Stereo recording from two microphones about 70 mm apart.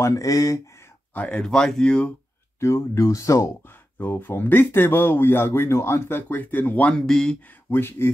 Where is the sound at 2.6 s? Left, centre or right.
Left.